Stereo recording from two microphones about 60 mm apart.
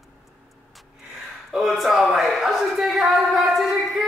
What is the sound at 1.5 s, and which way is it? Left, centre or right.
Speech, centre.